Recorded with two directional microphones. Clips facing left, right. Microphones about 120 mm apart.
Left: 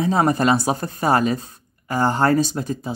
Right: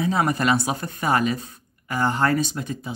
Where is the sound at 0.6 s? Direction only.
35° left (ahead or behind).